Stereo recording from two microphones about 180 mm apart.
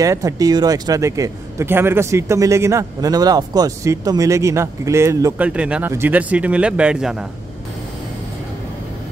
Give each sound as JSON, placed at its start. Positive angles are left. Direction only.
{"t": 0.0, "sound": "speech", "side_deg": -20}